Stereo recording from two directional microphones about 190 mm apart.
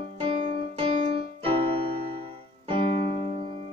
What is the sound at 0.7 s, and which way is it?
Keyboard, 30° right (ahead or behind).